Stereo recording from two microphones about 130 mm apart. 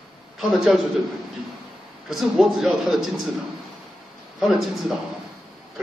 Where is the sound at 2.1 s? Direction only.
Centre (ahead or behind).